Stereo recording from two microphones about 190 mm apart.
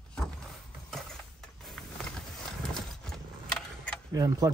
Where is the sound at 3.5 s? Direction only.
5° left (ahead or behind).